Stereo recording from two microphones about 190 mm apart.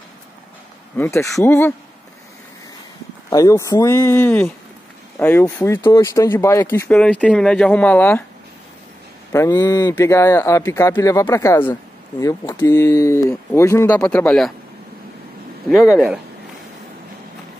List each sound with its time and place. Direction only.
0.9 s speech: 15° left (ahead or behind)
3.3 s speech: 15° left (ahead or behind)
9.3 s speech: 15° left (ahead or behind)
15.7 s speech: centre (ahead or behind)